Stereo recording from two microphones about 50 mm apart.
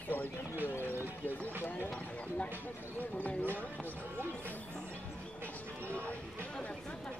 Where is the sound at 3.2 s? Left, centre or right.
Left.